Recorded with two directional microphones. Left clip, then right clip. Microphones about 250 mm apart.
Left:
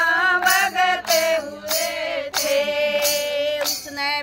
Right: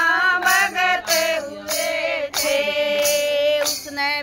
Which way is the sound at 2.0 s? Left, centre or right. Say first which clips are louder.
Right 2 dB; right.